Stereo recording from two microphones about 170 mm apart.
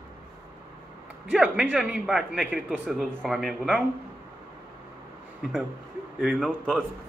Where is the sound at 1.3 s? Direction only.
5° right (ahead or behind).